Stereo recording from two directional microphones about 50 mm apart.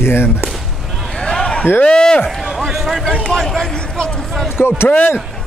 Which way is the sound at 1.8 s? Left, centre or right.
Centre.